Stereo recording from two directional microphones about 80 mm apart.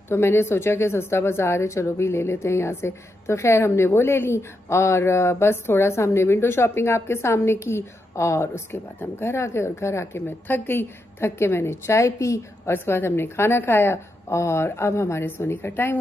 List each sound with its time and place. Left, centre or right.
0.1 s speech: left
12.7 s speech: left